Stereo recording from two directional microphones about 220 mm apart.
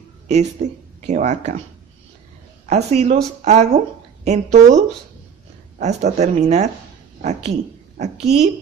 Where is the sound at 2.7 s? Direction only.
30° right (ahead or behind).